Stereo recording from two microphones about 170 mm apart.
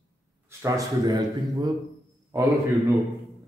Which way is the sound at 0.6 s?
20° right (ahead or behind).